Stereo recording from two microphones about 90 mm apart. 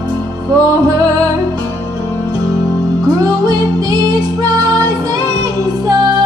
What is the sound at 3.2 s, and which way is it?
Music, 50° right (ahead or behind).